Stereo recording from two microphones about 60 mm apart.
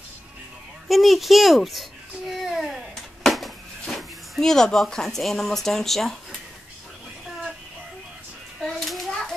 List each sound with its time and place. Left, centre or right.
0.8 s babbling: centre
3.3 s speech: centre
8.5 s children playing: centre